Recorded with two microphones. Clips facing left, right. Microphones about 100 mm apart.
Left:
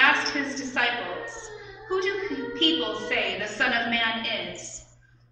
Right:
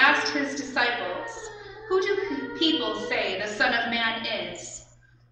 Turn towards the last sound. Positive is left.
turn(degrees=0)  # may be behind; listen again after turning